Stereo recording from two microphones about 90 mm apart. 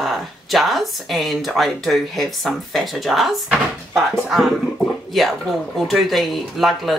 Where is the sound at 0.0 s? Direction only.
Centre (ahead or behind).